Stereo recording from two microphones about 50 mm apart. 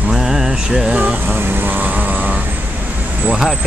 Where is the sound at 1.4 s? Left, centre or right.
Right.